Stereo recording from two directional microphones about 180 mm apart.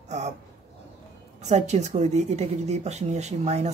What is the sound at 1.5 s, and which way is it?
Speech, 40° right (ahead or behind).